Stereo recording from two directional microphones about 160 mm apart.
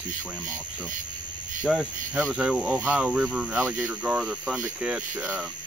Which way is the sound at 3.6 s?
15° right (ahead or behind).